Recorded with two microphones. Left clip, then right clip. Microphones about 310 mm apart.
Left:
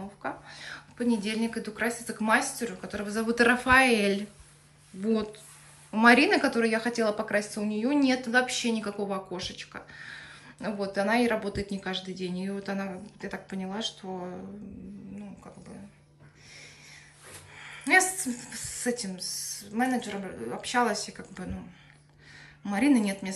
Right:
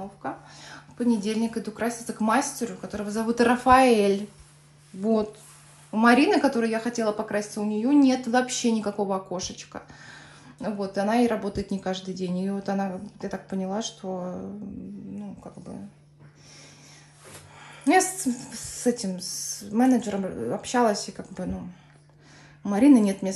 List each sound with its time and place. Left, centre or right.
0.2 s speech: centre
17.6 s a sound: centre
18.1 s speech: centre
22.7 s speech: right